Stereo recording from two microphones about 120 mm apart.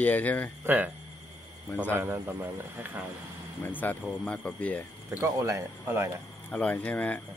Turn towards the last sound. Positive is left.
turn(degrees=10)  # may be behind; listen again after turning